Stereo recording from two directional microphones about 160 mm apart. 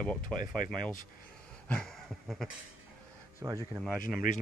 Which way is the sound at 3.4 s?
15° right (ahead or behind).